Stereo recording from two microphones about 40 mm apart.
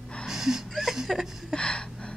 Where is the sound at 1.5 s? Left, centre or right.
Left.